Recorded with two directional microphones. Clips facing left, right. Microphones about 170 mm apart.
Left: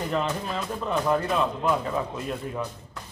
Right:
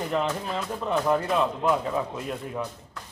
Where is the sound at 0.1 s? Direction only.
15° right (ahead or behind).